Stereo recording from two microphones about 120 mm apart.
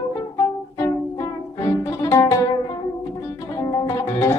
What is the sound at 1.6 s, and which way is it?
Music, 25° left (ahead or behind).